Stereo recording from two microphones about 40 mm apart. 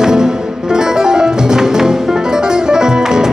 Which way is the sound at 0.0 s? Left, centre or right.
Centre.